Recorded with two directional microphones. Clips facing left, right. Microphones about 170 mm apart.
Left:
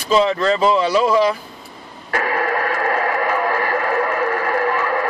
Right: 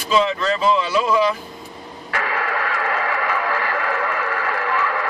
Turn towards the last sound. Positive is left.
turn(degrees=40)  # may be behind; listen again after turning